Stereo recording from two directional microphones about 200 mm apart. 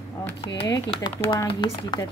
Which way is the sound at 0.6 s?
20° left (ahead or behind).